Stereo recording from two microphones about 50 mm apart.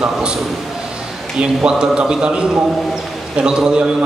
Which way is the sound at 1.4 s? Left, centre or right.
Centre.